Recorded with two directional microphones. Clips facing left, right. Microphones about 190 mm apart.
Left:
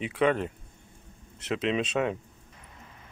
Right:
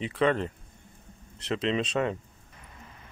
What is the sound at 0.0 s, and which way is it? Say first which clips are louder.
Speech: even; 5° left (ahead or behind).